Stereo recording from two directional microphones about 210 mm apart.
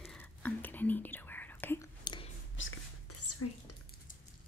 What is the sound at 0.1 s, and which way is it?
Whispering, 10° left (ahead or behind).